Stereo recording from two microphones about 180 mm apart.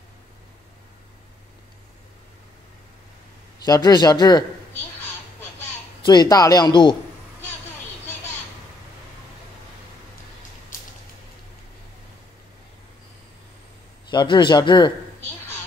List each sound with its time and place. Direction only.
3.6 s a man's voice: 20° left (ahead or behind)
6.0 s a man's voice: 20° left (ahead or behind)
14.1 s a man's voice: 25° left (ahead or behind)